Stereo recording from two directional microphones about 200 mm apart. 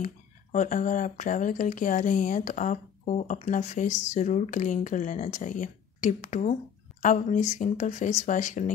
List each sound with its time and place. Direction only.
0.0 s speech: 35° left (ahead or behind)